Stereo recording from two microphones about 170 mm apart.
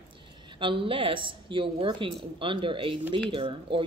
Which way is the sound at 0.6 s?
30° right (ahead or behind).